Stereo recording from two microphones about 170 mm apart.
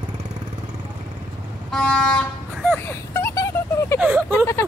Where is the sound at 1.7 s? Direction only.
5° left (ahead or behind).